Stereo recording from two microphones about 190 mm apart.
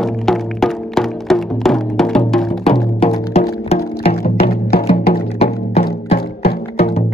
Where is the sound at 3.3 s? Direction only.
30° left (ahead or behind).